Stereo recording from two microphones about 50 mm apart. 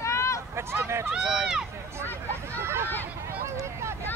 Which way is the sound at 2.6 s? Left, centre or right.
Right.